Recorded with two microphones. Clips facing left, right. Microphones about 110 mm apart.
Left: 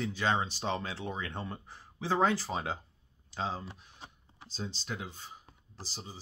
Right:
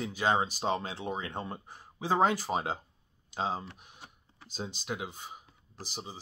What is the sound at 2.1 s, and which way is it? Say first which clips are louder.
Speech: right 2 dB; 15° right (ahead or behind).